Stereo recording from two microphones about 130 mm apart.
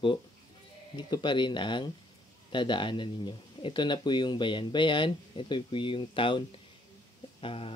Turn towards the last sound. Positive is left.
turn(degrees=45)  # may be behind; listen again after turning